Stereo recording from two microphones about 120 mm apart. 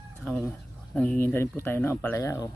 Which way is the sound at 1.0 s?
15° left (ahead or behind).